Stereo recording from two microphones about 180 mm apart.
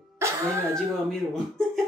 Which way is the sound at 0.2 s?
15° right (ahead or behind).